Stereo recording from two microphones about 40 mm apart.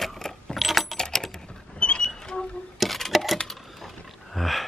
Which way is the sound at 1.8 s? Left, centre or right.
Left.